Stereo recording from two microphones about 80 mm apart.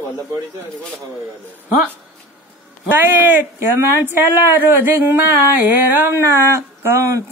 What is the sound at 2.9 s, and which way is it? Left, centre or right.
A woman's voice, right.